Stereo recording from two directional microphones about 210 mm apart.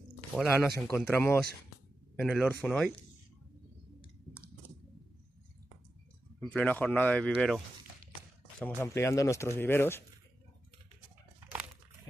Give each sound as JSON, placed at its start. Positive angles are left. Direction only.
{"t": 0.3, "sound": "speech", "side_deg": 0}
{"t": 2.1, "sound": "speech", "side_deg": 0}
{"t": 6.4, "sound": "speech", "side_deg": 5}